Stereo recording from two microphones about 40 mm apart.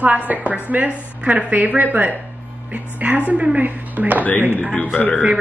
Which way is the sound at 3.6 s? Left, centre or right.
Right.